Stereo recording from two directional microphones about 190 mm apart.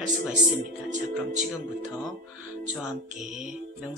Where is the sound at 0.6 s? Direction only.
40° right (ahead or behind).